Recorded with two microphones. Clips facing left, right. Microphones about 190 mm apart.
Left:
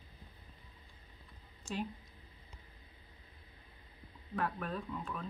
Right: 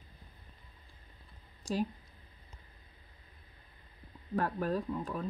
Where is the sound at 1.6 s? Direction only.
35° right (ahead or behind).